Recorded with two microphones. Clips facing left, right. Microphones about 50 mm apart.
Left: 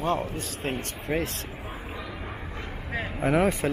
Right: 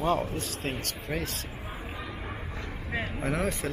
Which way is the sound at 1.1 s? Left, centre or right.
Left.